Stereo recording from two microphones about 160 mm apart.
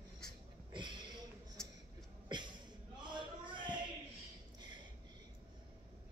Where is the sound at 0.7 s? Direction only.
30° right (ahead or behind).